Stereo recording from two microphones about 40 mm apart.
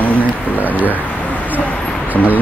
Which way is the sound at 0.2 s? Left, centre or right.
Right.